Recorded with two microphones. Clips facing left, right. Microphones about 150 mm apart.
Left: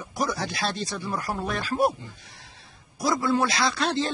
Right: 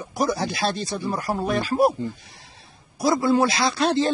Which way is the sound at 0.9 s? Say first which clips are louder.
Right 4 dB; 30° right (ahead or behind).